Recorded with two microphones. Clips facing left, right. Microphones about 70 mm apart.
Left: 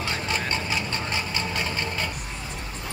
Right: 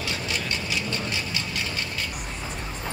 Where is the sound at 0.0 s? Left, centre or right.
Left.